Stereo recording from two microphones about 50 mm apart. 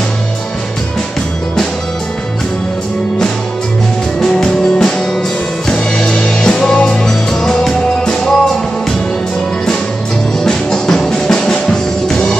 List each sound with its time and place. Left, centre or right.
4.4 s music: centre
10.4 s music: centre